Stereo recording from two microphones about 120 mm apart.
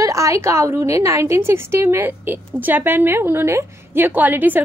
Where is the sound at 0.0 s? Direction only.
25° right (ahead or behind).